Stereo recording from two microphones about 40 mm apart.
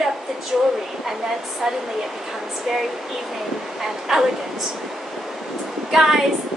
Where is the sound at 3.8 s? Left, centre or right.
Centre.